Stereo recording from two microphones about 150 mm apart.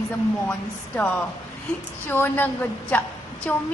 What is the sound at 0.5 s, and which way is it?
Speech, 10° left (ahead or behind).